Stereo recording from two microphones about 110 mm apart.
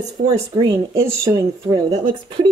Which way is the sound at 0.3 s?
40° right (ahead or behind).